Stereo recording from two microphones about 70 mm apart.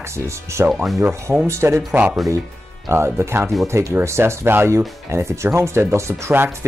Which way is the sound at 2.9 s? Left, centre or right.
Right.